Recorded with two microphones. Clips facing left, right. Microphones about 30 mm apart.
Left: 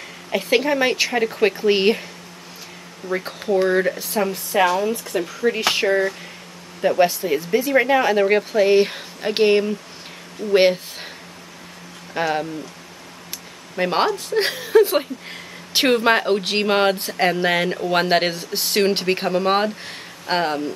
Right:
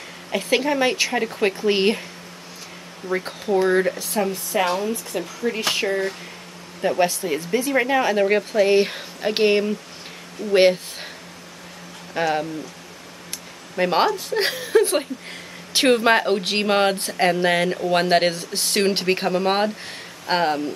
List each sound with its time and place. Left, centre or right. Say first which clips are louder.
0.3 s speech: left 2 dB; centre
3.1 s speech: left 1 dB; centre; by 5.9 s left
6.8 s speech: left 3 dB; centre
12.1 s speech: even; centre
13.7 s speech: even; centre